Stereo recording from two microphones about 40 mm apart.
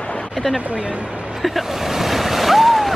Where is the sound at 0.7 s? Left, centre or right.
Right.